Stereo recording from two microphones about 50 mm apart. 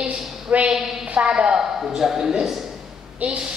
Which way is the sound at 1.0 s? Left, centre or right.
Right.